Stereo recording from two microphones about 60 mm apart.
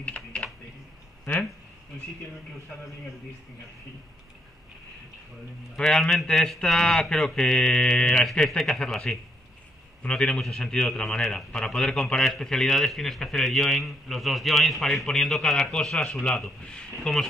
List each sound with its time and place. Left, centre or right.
0.0 s typing: left
1.3 s speech: left
5.8 s speech: centre
8.3 s a man's voice: centre
8.6 s speech: centre
8.9 s a man's voice: centre
10.0 s a man's voice: centre